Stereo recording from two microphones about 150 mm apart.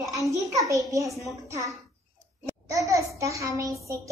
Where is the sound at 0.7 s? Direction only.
20° right (ahead or behind).